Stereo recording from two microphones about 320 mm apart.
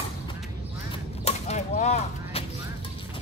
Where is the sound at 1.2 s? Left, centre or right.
Centre.